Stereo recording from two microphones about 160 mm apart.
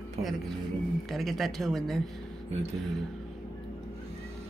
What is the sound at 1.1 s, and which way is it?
Speech, centre (ahead or behind).